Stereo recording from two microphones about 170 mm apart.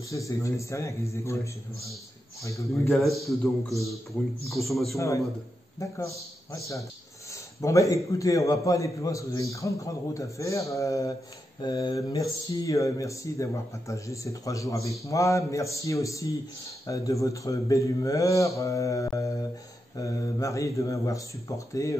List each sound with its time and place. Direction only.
0.1 s a man's voice: 20° left (ahead or behind)
3.0 s a man's voice: centre (ahead or behind)
4.5 s a man's voice: centre (ahead or behind)
4.9 s a man's voice: 20° left (ahead or behind)
7.6 s speech: 20° left (ahead or behind)